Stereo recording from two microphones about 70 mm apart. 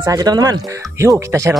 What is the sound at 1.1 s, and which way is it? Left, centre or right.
Speech, right.